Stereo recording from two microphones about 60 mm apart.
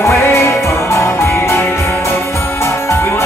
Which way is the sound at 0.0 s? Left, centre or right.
Left.